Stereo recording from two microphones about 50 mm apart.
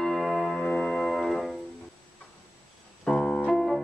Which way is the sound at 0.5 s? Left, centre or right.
Centre.